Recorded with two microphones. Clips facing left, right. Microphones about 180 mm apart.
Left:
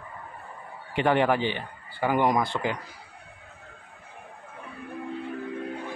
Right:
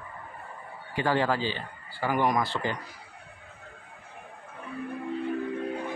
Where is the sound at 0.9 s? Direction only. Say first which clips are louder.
Left 4 dB; 20° left (ahead or behind).